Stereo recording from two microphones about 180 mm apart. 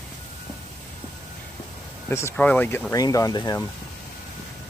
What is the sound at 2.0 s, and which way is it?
Speech, 15° left (ahead or behind).